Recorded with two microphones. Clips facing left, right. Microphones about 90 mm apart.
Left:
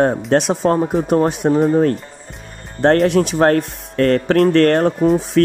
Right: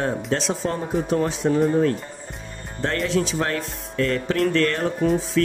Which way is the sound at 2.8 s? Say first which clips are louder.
Left 10 dB; 60° left (ahead or behind).